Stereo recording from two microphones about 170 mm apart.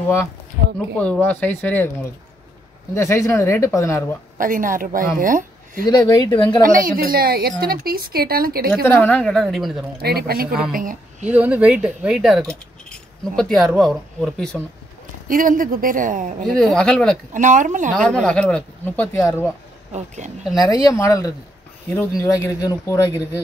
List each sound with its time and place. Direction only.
0.7 s speech: 5° left (ahead or behind)
2.9 s speech: 15° left (ahead or behind)
4.4 s speech: 50° right (ahead or behind)
5.9 s speech: 25° left (ahead or behind)
6.6 s a woman's voice: 55° right (ahead or behind)
8.8 s speech: 10° left (ahead or behind)
10.0 s speech: 65° right (ahead or behind)
10.7 s a woman's voice: 55° right (ahead or behind)
11.2 s speech: 10° right (ahead or behind)
15.2 s speech: 55° right (ahead or behind)
16.4 s speech: centre (ahead or behind)
17.3 s speech: 50° right (ahead or behind)
17.9 s speech: 5° left (ahead or behind)
20.5 s speech: 20° left (ahead or behind)